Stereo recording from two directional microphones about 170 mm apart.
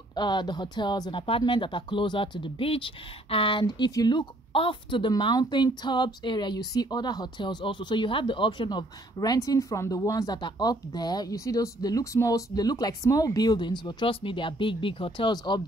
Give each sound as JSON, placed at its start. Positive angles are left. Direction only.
{"t": 0.1, "sound": "speech", "side_deg": 25}